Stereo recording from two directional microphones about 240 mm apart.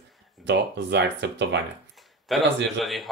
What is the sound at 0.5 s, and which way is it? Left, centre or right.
Speech, right.